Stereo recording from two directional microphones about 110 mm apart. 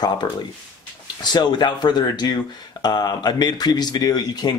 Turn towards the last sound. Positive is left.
turn(degrees=35)  # may be behind; listen again after turning